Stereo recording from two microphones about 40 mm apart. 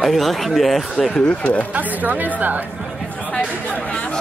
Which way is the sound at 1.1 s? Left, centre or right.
Left.